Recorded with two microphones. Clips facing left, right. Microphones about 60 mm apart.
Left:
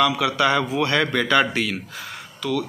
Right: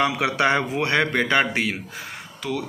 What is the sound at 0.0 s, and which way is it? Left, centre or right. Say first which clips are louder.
A man's voice: left 1 dB; right.